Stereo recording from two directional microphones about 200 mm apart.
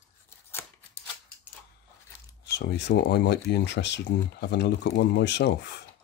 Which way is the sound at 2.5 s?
60° left (ahead or behind).